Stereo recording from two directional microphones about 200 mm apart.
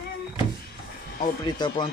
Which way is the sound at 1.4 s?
20° left (ahead or behind).